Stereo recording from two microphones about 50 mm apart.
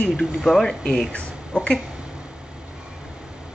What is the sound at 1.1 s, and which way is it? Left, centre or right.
Speech, left.